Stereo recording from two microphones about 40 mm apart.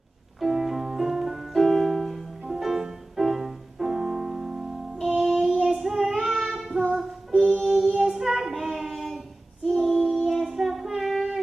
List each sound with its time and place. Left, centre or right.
0.4 s music: centre
2.4 s music: centre
5.1 s child singing: centre
7.2 s music: centre
7.8 s child singing: centre
9.7 s female singing: centre
10.4 s a sound: centre